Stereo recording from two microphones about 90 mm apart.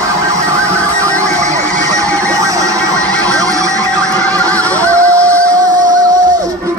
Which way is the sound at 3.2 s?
40° right (ahead or behind).